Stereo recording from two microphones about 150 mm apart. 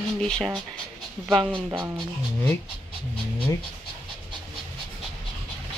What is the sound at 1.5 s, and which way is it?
Speech, 20° right (ahead or behind).